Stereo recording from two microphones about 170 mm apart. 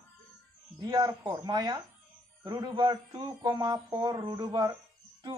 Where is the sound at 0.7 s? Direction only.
25° right (ahead or behind).